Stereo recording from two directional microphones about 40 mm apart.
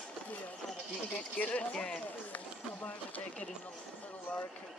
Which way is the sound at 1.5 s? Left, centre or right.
Left.